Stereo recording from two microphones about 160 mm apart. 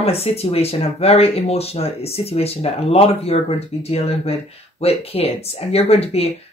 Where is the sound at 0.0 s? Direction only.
40° left (ahead or behind).